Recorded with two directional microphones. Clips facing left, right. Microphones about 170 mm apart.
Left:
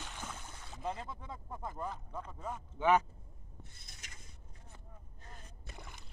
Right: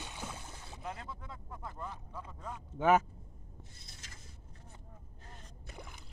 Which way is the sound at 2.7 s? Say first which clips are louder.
Right 2 dB; 45° right (ahead or behind).